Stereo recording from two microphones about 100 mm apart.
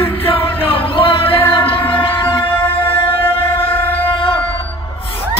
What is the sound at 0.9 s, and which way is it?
Music, 60° left (ahead or behind).